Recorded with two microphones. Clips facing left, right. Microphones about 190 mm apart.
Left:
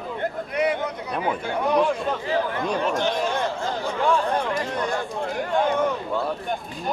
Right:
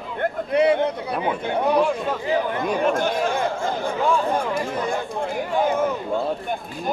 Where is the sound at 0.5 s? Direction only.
30° right (ahead or behind).